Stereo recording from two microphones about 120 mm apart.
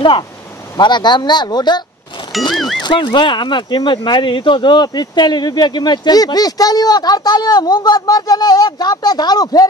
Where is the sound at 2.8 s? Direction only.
40° left (ahead or behind).